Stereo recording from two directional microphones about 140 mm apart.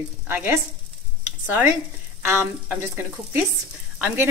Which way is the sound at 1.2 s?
15° right (ahead or behind).